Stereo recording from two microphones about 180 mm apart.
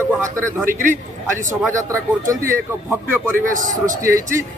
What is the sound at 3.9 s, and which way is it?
Speech, 15° right (ahead or behind).